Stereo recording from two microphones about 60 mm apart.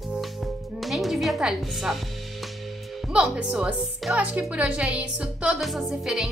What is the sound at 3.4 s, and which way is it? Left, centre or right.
A woman's voice, right.